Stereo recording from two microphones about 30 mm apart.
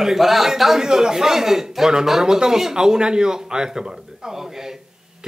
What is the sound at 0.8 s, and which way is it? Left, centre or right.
A man's voice, right.